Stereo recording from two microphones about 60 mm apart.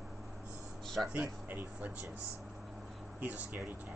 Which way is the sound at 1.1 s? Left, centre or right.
Right.